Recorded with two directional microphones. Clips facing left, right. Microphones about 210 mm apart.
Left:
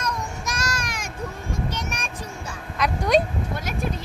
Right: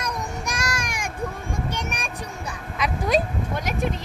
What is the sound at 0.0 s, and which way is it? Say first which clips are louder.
Child singing: even; 15° right (ahead or behind).